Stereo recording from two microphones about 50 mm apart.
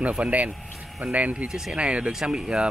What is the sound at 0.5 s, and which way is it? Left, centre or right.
Vehicle, centre.